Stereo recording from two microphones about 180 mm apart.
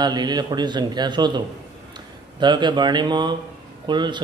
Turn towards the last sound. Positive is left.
turn(degrees=-25)  # may be behind; listen again after turning